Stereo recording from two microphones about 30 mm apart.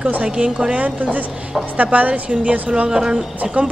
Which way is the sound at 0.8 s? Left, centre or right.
Right.